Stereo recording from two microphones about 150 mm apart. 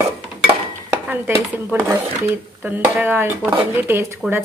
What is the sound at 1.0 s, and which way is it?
Speech, 10° right (ahead or behind).